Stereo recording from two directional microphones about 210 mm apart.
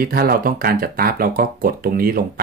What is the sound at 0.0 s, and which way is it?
Speech, 45° right (ahead or behind).